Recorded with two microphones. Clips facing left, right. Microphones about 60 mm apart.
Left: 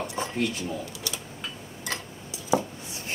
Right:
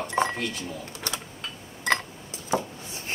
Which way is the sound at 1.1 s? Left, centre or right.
Right.